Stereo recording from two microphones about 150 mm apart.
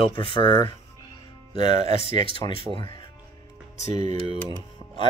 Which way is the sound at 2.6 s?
40° right (ahead or behind).